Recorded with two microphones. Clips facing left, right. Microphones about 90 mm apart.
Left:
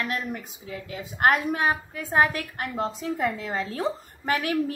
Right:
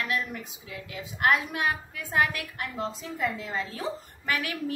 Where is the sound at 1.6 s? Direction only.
35° left (ahead or behind).